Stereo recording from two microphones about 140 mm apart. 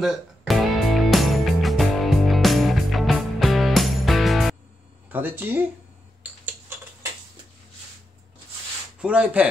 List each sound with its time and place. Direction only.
0.0 s music: centre (ahead or behind)
5.1 s speech: 15° right (ahead or behind)
9.0 s speech: 10° right (ahead or behind)